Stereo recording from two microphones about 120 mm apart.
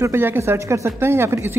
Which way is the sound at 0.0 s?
20° right (ahead or behind).